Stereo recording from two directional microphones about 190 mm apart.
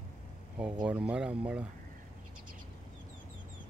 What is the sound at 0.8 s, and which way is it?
Speech, 5° right (ahead or behind).